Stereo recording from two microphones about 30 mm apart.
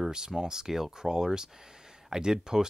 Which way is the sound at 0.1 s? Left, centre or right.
Right.